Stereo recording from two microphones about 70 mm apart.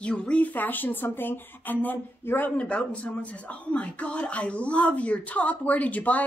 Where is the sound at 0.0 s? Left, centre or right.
Centre.